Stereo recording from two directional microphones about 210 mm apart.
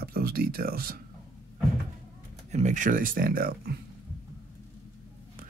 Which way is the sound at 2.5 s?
35° right (ahead or behind).